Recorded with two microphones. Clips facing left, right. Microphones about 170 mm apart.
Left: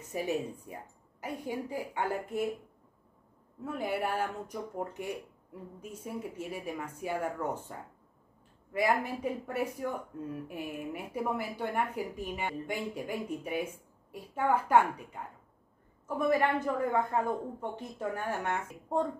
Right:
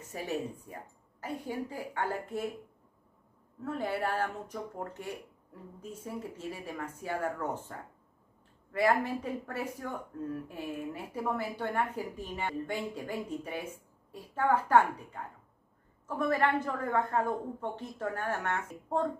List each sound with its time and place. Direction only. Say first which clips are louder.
0.1 s speech: left 3 dB; 15° left (ahead or behind)
3.6 s speech: even; 15° left (ahead or behind)
8.7 s speech: right 1 dB; 15° left (ahead or behind)